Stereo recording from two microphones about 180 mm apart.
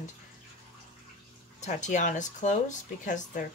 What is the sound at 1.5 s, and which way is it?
Speech, 40° left (ahead or behind).